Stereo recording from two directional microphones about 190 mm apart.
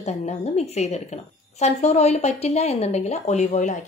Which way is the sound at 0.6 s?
35° left (ahead or behind).